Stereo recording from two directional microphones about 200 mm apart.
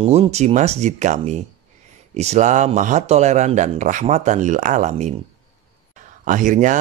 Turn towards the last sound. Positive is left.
turn(degrees=-40)  # may be behind; listen again after turning